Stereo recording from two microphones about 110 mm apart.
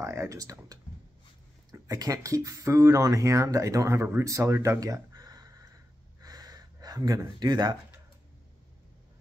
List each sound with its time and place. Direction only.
0.0 s speech: 25° right (ahead or behind)
6.2 s gasp: 35° right (ahead or behind)